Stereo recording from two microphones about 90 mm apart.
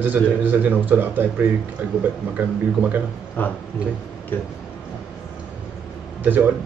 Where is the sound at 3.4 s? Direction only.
20° left (ahead or behind).